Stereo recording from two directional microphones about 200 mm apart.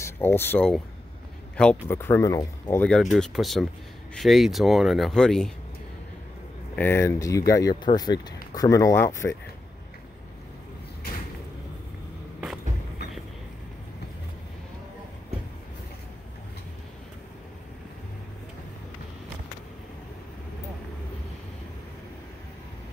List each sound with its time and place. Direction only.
0.0 s speech: 10° left (ahead or behind)
2.9 s speech: centre (ahead or behind)
6.7 s speech: 10° left (ahead or behind)